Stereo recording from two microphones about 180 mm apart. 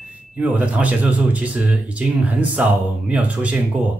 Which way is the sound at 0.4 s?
10° right (ahead or behind).